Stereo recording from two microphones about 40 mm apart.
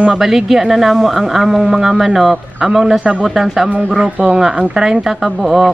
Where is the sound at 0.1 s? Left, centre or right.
Centre.